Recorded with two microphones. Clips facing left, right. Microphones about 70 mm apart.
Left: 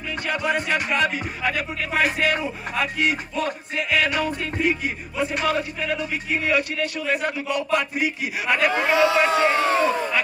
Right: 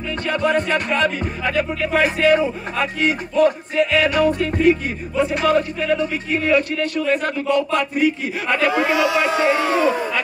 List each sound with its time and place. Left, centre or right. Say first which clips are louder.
0.3 s speech: right 5 dB; centre
8.8 s speech: even; left
9.5 s speech: right 3 dB; right